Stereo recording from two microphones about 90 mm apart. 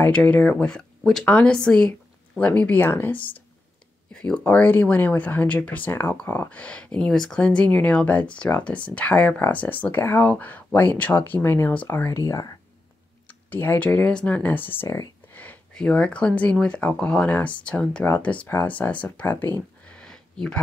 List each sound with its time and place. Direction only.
0.0 s speech: 15° left (ahead or behind)
4.1 s speech: 10° left (ahead or behind)
12.3 s speech: 40° left (ahead or behind)
13.3 s speech: 20° left (ahead or behind)
15.7 s speech: 10° left (ahead or behind)
19.8 s a sound: 10° left (ahead or behind)